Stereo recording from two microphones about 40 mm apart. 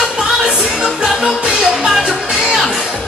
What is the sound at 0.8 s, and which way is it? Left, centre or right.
Music, centre.